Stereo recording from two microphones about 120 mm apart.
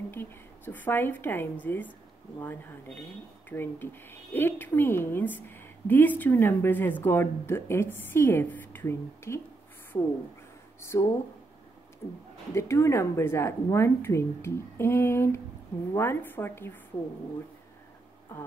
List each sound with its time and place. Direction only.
0.1 s speech: 15° left (ahead or behind)
12.5 s speech: 25° left (ahead or behind)